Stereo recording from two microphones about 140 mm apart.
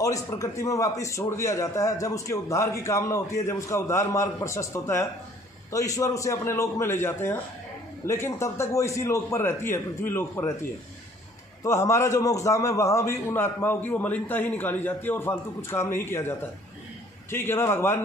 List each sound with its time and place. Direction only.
0.0 s a man's voice: 25° left (ahead or behind)
11.6 s a man's voice: 20° left (ahead or behind)